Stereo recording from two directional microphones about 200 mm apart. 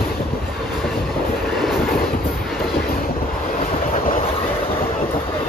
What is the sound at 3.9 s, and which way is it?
Train, 40° left (ahead or behind).